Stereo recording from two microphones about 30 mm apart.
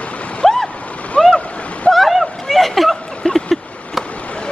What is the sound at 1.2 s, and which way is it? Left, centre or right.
Splash, left.